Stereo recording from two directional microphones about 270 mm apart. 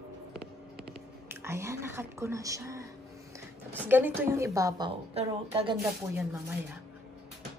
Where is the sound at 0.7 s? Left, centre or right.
Centre.